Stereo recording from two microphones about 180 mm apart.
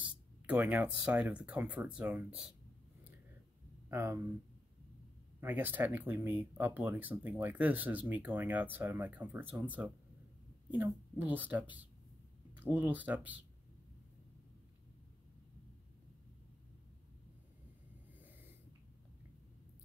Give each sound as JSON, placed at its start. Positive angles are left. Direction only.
{"t": 0.0, "sound": "speech", "side_deg": -5}
{"t": 3.9, "sound": "speech", "side_deg": -10}
{"t": 5.4, "sound": "speech", "side_deg": -10}